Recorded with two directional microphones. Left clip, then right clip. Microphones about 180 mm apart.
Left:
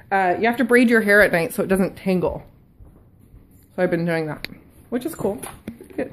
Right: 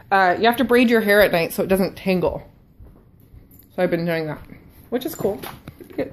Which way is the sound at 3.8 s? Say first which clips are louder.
Even; 20° left (ahead or behind).